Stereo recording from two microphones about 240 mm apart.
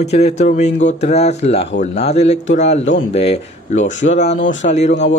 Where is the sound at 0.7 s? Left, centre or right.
Left.